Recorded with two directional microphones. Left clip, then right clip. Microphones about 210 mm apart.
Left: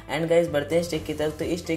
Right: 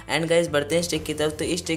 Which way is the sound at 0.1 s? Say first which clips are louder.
Right 1 dB; 15° right (ahead or behind).